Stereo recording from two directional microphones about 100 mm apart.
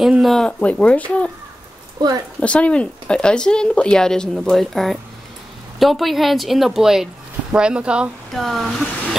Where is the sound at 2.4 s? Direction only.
10° left (ahead or behind); by 8.1 s 10° right (ahead or behind).